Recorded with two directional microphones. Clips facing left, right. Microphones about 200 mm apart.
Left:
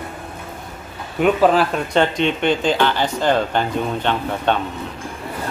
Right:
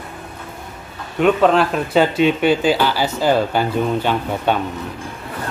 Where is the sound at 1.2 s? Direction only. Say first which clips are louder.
Right 1 dB; 5° left (ahead or behind).